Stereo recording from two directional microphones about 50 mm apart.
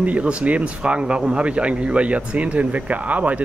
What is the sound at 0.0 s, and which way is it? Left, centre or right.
Speech, right.